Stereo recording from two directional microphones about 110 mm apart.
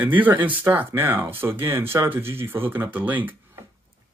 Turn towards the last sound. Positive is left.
turn(degrees=-15)  # may be behind; listen again after turning